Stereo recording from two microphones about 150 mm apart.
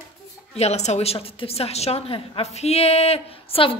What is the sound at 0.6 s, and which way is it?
A woman's voice, 45° left (ahead or behind).